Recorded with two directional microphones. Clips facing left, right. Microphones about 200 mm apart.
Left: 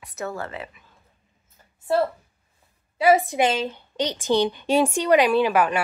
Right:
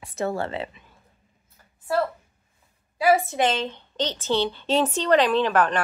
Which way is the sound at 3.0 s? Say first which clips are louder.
Left 2 dB; 20° left (ahead or behind).